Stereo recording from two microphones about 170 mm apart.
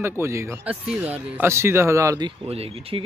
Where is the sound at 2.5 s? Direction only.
35° right (ahead or behind).